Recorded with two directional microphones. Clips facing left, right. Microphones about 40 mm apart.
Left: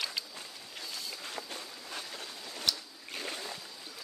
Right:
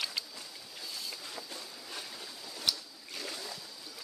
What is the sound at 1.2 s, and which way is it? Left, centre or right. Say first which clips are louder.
Walk: left 3 dB; left.